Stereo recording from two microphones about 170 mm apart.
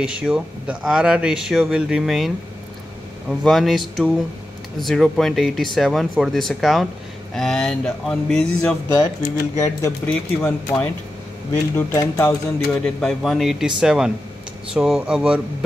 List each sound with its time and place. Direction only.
0.0 s a man's voice: 5° right (ahead or behind)
8.9 s speech: 20° left (ahead or behind)
12.8 s a man's voice: centre (ahead or behind)